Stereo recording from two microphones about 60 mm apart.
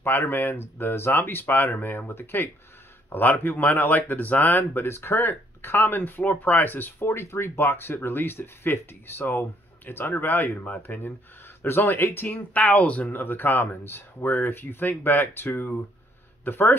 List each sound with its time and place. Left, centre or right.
0.0 s speech: left
12.4 s speech: left